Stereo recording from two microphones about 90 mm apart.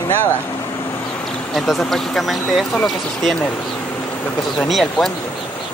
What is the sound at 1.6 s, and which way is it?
Speech, centre (ahead or behind).